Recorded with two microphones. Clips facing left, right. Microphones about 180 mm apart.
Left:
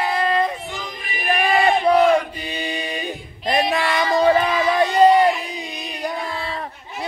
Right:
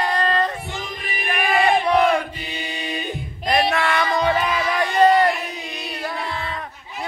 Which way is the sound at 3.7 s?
15° left (ahead or behind).